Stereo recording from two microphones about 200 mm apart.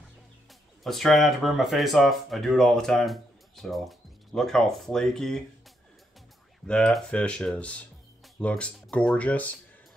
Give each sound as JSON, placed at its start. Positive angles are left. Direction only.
{"t": 0.5, "sound": "speech", "side_deg": 0}
{"t": 6.7, "sound": "speech", "side_deg": 5}